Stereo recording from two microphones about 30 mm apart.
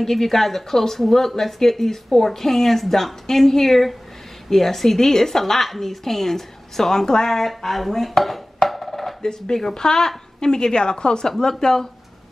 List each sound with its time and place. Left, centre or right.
0.0 s speech: centre
5.4 s speech: centre
7.2 s speech: centre
8.6 s music: centre
9.2 s a woman's voice: left
9.6 s a woman's voice: centre; by 11.2 s left
11.2 s speech: centre